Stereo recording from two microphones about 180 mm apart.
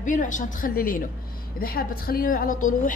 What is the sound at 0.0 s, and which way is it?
A woman's voice, 45° left (ahead or behind).